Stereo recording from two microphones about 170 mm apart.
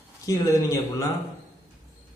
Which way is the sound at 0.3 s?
20° left (ahead or behind).